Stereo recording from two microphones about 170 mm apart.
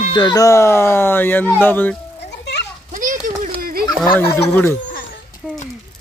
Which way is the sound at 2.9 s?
50° right (ahead or behind).